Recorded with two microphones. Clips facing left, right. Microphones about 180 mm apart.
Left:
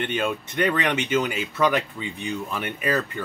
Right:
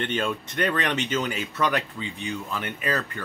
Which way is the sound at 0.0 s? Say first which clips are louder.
Left 1 dB; 15° left (ahead or behind).